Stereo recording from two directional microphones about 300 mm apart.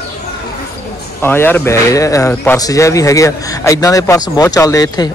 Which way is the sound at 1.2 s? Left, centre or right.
Centre.